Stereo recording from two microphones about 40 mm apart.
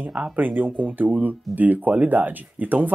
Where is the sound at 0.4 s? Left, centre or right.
Right.